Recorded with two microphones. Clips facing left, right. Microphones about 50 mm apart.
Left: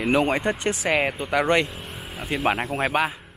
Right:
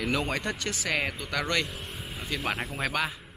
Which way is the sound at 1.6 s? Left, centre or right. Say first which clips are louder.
Left 3 dB; centre.